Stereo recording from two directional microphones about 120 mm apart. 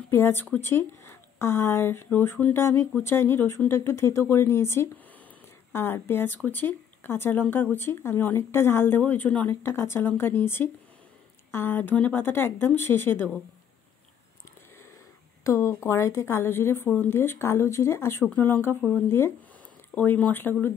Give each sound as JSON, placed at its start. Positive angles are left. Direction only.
{"t": 0.1, "sound": "speech", "side_deg": 20}
{"t": 15.4, "sound": "speech", "side_deg": 25}